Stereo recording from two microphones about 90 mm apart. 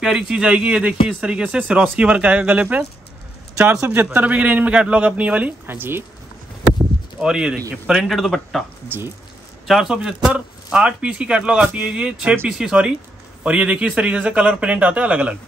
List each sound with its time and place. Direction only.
0.0 s speech: 10° right (ahead or behind)
3.8 s speech: 20° right (ahead or behind)
7.2 s a man's voice: 10° right (ahead or behind)
8.8 s speech: 25° right (ahead or behind)
9.7 s speech: 5° right (ahead or behind)